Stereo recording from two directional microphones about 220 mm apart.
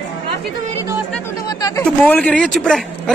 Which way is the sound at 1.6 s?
15° left (ahead or behind).